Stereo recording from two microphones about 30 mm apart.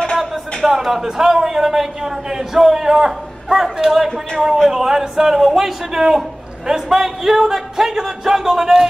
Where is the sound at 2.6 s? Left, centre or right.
Centre.